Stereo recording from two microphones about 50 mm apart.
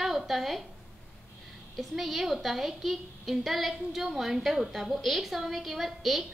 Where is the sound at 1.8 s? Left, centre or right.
Centre.